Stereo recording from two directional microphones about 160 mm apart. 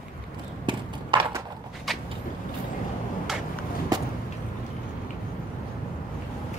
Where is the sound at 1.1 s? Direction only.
30° right (ahead or behind).